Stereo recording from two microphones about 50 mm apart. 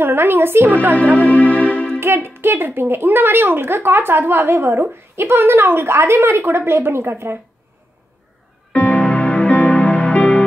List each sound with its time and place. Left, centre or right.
0.0 s a woman's voice: right
1.2 s music: left
2.0 s a woman's voice: right
8.7 s music: left